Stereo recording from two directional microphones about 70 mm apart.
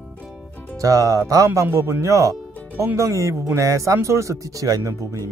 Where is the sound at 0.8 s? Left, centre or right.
Right.